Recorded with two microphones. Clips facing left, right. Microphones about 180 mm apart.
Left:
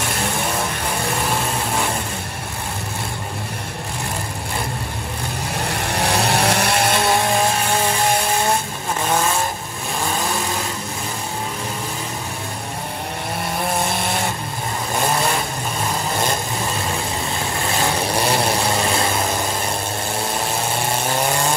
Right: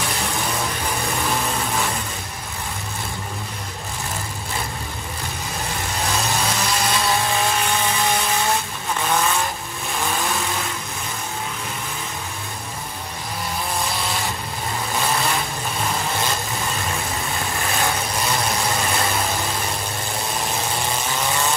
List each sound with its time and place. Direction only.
5.7 s vehicle: 65° left (ahead or behind)
18.1 s vehicle: 30° left (ahead or behind)